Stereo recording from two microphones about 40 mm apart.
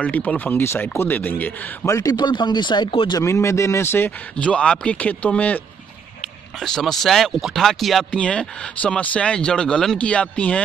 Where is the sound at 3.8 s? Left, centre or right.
Left.